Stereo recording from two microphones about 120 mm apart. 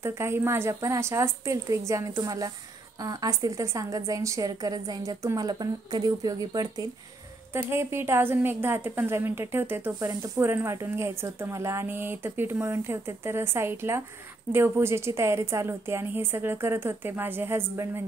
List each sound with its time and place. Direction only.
0.0 s a woman's voice: 20° right (ahead or behind)
7.5 s a woman's voice: 20° right (ahead or behind)